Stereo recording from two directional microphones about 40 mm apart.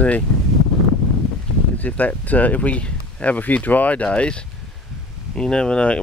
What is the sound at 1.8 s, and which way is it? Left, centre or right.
Speech, left.